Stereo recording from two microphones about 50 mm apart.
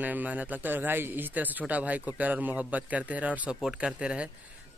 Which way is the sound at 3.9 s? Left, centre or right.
Centre.